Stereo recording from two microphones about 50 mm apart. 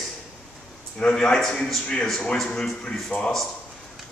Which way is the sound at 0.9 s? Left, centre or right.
Centre.